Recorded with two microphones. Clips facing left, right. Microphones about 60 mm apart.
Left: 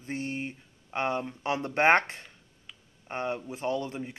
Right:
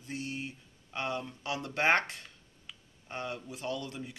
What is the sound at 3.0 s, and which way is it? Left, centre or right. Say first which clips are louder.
Speech: left 6 dB; left.